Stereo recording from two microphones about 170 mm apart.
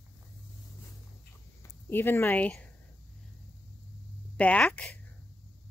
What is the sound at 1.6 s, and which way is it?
Speech, 10° left (ahead or behind).